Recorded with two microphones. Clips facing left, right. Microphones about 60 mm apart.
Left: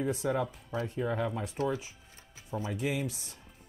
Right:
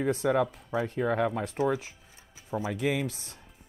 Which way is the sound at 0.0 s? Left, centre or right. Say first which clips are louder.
Right 5 dB; right.